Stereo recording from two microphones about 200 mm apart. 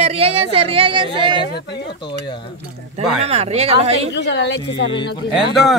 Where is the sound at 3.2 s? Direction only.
30° right (ahead or behind).